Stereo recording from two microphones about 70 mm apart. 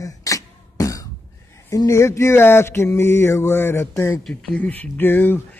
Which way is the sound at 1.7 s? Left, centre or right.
Left.